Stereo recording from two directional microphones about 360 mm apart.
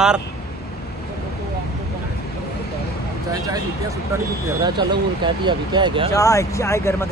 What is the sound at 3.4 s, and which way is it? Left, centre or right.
Speech, centre.